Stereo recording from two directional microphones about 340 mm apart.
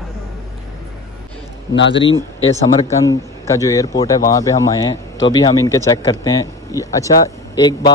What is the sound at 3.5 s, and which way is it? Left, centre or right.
A man's voice, centre.